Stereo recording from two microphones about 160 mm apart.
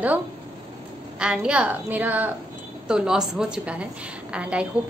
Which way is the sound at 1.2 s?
5° right (ahead or behind).